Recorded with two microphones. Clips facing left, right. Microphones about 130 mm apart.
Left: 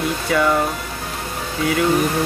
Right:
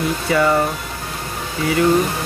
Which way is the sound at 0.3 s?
Centre (ahead or behind).